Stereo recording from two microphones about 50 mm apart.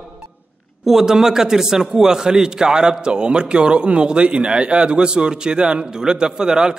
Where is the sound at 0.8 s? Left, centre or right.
Centre.